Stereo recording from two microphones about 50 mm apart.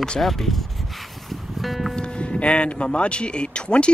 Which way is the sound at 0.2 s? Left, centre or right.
Centre.